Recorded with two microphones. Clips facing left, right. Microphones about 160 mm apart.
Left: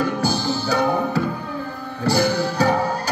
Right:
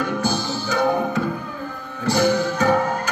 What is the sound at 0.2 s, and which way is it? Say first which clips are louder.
Music: left 2 dB; 35° left (ahead or behind).